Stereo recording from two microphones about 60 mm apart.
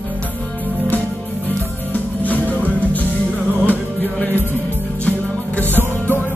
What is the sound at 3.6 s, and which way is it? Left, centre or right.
Music, left.